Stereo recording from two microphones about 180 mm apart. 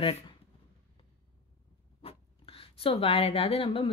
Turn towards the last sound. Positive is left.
turn(degrees=30)  # may be behind; listen again after turning